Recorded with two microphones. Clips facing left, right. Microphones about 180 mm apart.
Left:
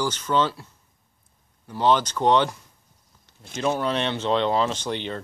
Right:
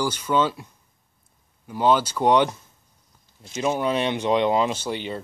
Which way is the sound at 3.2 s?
60° left (ahead or behind).